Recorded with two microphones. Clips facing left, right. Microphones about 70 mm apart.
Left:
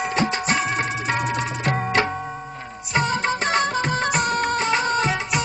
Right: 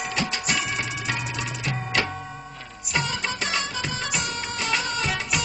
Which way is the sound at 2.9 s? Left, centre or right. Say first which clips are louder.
Left 6 dB; left.